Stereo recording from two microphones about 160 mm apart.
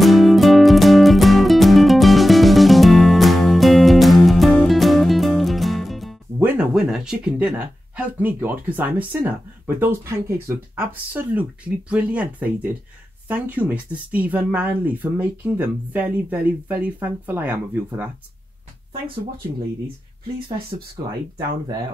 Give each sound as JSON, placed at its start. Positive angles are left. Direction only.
{"t": 0.0, "sound": "music", "side_deg": 0}
{"t": 6.4, "sound": "speech", "side_deg": -5}
{"t": 21.0, "sound": "speech", "side_deg": -20}